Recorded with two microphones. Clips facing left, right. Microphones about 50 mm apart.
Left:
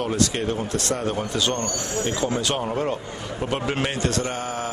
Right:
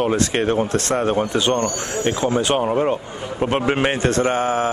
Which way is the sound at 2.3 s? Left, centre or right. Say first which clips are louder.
Right 6 dB; right.